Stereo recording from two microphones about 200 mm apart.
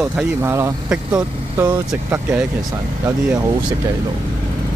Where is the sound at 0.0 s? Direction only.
10° right (ahead or behind).